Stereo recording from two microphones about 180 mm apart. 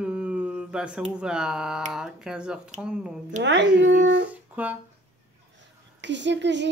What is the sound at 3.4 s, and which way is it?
Speech, 85° right.